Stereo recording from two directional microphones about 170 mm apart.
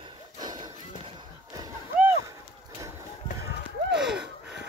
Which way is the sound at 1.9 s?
15° right (ahead or behind).